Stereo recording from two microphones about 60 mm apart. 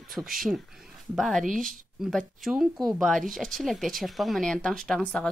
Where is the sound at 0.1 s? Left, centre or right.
Centre.